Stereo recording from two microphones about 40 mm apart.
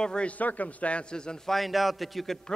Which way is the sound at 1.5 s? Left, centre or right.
Centre.